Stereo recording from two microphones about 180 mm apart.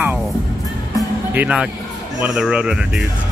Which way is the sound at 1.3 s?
5° right (ahead or behind).